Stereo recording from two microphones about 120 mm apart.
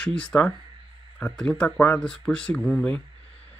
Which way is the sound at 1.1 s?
10° left (ahead or behind).